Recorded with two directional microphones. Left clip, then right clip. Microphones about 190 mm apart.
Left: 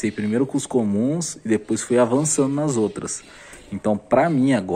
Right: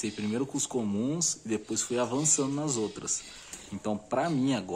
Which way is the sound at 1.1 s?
15° left (ahead or behind).